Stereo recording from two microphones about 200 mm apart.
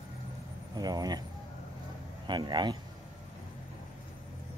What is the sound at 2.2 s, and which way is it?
Speech, 20° right (ahead or behind).